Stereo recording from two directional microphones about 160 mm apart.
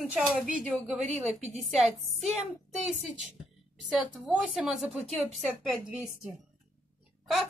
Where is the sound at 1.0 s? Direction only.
45° right (ahead or behind).